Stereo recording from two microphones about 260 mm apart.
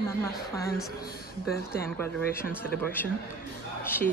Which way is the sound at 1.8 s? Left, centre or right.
Centre.